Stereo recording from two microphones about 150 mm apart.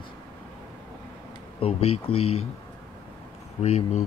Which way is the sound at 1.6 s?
40° left (ahead or behind).